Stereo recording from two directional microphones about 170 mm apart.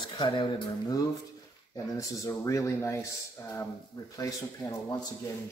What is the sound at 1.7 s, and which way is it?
Speech, 20° left (ahead or behind).